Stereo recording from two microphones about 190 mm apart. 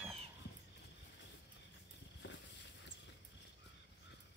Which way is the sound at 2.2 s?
65° left (ahead or behind).